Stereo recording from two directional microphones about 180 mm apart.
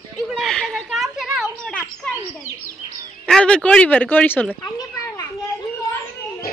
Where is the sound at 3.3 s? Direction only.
5° left (ahead or behind).